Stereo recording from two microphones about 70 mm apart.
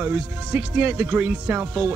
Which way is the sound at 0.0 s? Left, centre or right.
Right.